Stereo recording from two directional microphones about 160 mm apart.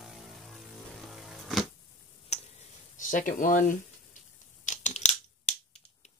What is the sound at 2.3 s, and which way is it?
Tick, 40° left (ahead or behind).